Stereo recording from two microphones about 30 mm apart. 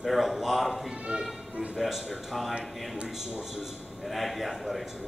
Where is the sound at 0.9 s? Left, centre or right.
Right.